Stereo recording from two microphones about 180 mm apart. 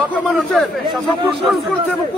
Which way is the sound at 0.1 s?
Centre (ahead or behind).